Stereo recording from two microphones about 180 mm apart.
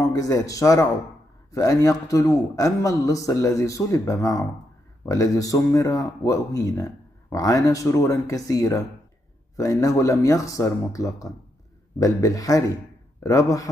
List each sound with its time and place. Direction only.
0.0 s speech: 20° left (ahead or behind)